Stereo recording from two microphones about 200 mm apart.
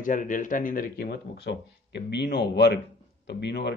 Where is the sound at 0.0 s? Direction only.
40° left (ahead or behind).